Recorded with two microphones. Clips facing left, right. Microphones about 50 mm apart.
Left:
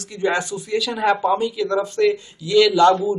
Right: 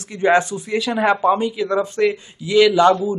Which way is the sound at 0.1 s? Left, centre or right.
Right.